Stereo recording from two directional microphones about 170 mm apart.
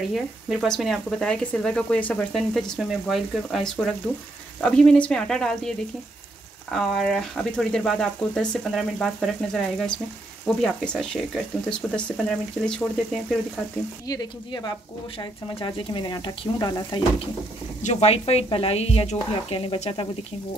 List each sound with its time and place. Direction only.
0.1 s speech: centre (ahead or behind)
6.7 s speech: centre (ahead or behind)
14.0 s speech: 25° left (ahead or behind)
17.8 s speech: 40° left (ahead or behind)